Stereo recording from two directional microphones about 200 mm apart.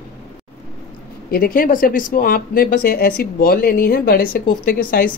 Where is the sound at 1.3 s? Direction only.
45° left (ahead or behind).